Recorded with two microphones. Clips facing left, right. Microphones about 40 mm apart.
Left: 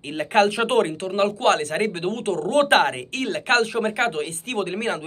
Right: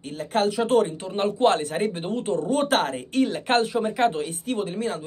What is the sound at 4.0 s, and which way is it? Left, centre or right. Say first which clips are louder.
Speech: right 1 dB; left.